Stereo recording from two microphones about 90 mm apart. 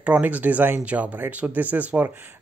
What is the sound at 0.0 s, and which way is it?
Speech, 15° right (ahead or behind).